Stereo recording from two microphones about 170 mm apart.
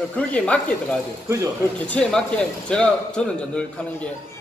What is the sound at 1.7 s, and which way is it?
A man's voice, 5° left (ahead or behind).